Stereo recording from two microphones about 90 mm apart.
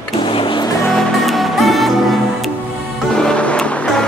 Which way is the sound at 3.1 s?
10° left (ahead or behind).